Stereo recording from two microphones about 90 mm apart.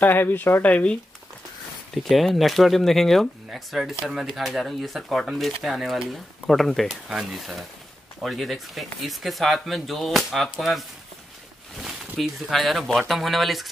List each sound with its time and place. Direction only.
0.0 s speech: 25° left (ahead or behind)
2.0 s speech: centre (ahead or behind)